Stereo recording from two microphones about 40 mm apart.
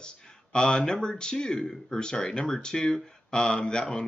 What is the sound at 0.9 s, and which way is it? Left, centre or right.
Speech, centre.